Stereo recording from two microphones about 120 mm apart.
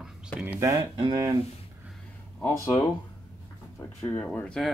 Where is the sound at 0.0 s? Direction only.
10° right (ahead or behind).